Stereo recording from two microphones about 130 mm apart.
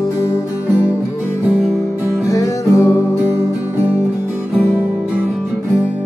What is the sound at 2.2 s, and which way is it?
Music, 25° left (ahead or behind).